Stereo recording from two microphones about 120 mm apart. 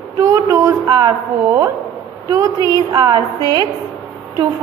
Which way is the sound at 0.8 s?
35° right (ahead or behind).